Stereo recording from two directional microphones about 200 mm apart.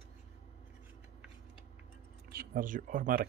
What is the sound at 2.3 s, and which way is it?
Speech, 50° right (ahead or behind).